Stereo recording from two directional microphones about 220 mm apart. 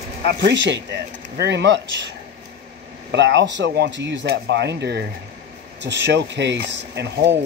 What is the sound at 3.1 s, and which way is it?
Speech, 55° right (ahead or behind).